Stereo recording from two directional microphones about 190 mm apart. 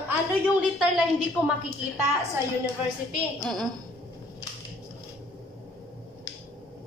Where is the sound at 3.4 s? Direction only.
Centre (ahead or behind).